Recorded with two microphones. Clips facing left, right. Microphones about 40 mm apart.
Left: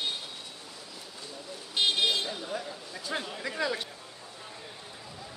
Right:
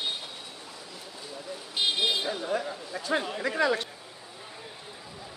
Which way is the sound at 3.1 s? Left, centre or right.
Centre.